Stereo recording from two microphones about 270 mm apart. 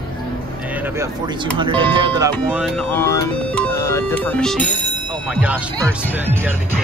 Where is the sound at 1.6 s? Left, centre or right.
Centre.